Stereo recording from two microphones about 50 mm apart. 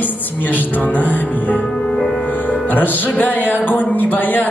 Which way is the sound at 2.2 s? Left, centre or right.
Left.